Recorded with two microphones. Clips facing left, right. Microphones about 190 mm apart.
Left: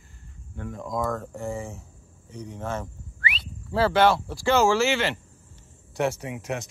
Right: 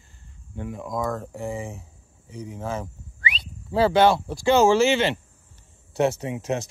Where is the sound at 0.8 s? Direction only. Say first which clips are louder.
Even; centre (ahead or behind).